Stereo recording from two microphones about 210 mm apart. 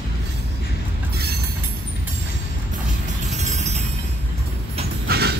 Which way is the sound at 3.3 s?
35° right (ahead or behind).